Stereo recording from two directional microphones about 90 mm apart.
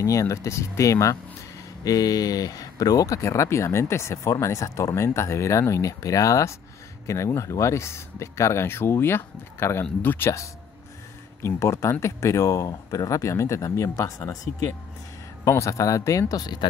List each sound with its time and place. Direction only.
0.0 s speech: 35° left (ahead or behind)